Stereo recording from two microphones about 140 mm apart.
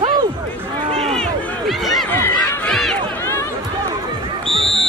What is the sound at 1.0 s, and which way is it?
Run, centre (ahead or behind).